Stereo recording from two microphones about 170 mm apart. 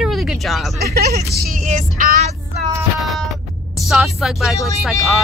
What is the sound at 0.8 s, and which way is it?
Speech, 65° right (ahead or behind).